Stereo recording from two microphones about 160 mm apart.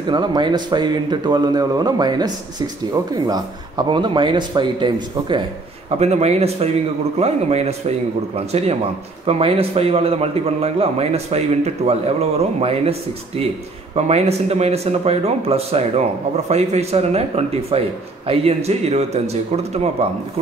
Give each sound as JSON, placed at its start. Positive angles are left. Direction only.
{"t": 0.1, "sound": "speech", "side_deg": -30}
{"t": 5.9, "sound": "a man's voice", "side_deg": -40}
{"t": 13.9, "sound": "a man's voice", "side_deg": -40}